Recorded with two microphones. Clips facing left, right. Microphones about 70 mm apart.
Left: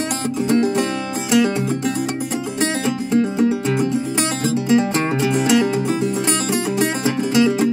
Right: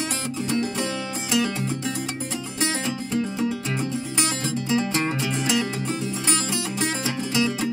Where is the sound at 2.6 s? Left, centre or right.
Left.